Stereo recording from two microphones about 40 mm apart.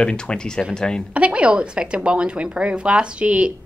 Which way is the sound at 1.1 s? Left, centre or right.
Right.